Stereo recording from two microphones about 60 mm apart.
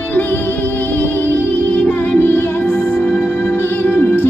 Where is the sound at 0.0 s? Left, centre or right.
Left.